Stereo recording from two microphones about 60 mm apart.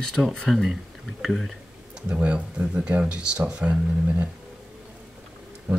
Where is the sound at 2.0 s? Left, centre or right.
Centre.